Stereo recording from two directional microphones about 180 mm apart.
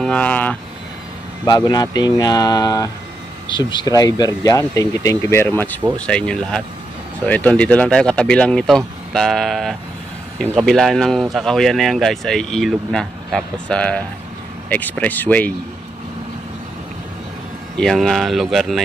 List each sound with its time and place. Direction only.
0.0 s speech: 5° left (ahead or behind)
1.4 s speech: 20° left (ahead or behind)
17.7 s speech: centre (ahead or behind)